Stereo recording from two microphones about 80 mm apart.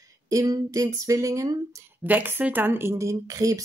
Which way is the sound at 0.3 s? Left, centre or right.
Right.